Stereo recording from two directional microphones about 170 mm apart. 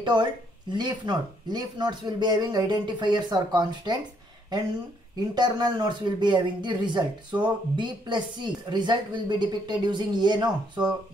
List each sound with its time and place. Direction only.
0.0 s speech: 25° right (ahead or behind)
5.3 s speech: 25° right (ahead or behind)